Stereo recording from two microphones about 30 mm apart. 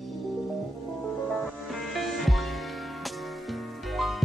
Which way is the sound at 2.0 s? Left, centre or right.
Centre.